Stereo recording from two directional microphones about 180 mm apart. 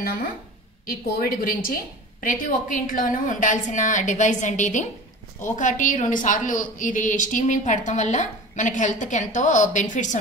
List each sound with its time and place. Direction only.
0.0 s a woman's voice: 55° left (ahead or behind)